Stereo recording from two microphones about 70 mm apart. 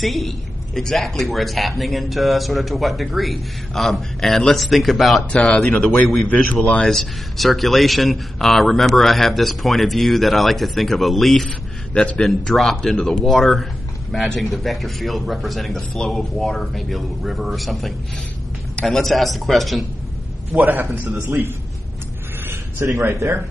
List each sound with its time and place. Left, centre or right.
0.0 s a man's voice: centre
5.3 s speech: centre
6.9 s a man's voice: centre
11.4 s a man's voice: centre
12.3 s a man's voice: centre
20.6 s a man's voice: right
21.1 s speech: right
22.8 s speech: right